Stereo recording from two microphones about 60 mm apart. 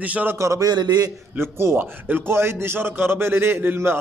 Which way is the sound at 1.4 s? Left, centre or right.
Right.